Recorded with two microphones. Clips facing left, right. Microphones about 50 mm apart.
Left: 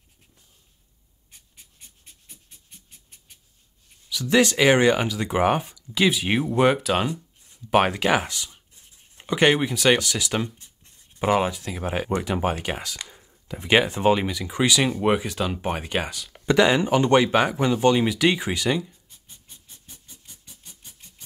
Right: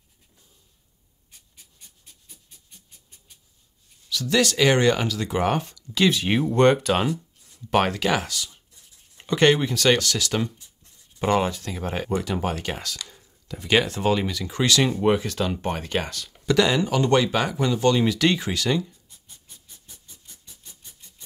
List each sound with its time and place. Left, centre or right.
4.1 s speech: centre
7.1 s speech: centre
16.4 s speech: left
19.2 s a sound: left